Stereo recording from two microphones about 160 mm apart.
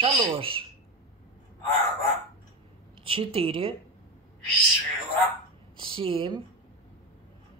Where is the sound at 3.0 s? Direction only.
35° right (ahead or behind).